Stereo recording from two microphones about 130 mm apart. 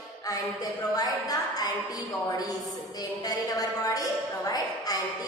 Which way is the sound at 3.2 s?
30° left (ahead or behind).